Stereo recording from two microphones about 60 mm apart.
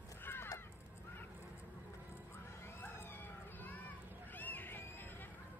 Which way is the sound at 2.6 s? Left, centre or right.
Left.